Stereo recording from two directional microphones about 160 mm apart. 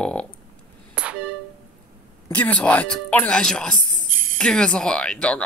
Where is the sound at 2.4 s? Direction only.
10° left (ahead or behind).